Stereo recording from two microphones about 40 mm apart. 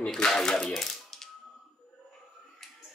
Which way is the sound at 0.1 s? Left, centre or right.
Centre.